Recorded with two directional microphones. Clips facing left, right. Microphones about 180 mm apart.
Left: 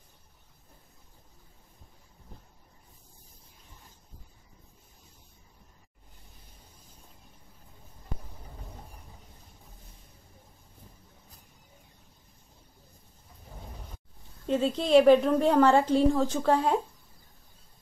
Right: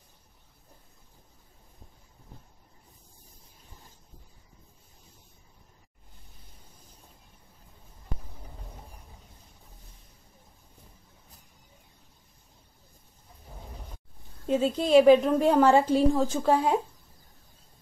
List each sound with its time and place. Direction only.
14.5 s a woman's voice: 5° right (ahead or behind)